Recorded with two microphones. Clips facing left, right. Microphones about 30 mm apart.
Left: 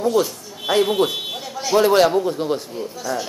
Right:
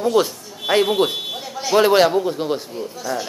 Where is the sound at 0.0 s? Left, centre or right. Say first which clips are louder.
Right 1 dB; right.